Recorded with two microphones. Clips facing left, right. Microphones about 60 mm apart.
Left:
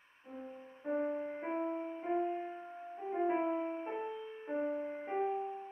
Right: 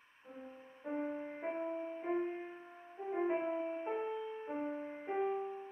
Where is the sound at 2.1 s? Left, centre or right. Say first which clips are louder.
Left 3 dB; centre.